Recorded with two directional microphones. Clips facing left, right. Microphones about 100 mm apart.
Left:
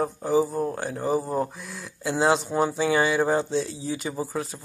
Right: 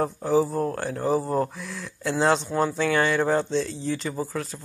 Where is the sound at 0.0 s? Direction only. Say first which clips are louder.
Right 1 dB; centre (ahead or behind).